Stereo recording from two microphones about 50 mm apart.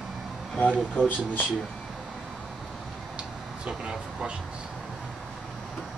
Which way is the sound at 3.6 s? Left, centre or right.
Centre.